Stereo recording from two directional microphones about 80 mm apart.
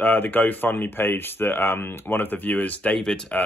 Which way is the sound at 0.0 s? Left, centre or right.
Left.